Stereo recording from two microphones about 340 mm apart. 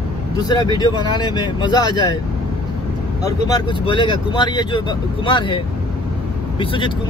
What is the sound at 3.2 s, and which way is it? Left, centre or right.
Speech, centre.